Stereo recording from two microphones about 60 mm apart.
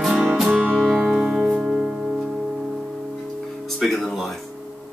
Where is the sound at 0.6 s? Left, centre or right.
Centre.